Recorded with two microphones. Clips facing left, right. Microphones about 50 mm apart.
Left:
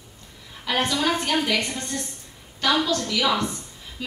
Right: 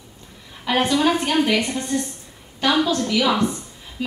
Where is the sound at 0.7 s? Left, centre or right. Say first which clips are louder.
Right 5 dB; centre.